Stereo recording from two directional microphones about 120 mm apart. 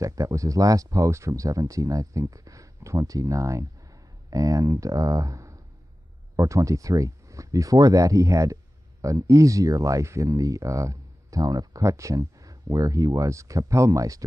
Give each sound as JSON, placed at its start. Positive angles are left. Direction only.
{"t": 0.0, "sound": "speech", "side_deg": -25}